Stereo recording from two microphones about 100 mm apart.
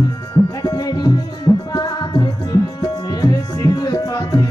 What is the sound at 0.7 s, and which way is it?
Music, 45° left (ahead or behind).